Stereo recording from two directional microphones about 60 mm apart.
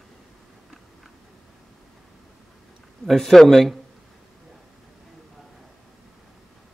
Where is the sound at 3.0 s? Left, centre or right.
Centre.